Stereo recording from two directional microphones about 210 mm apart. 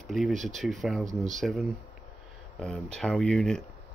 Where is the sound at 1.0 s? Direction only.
35° right (ahead or behind).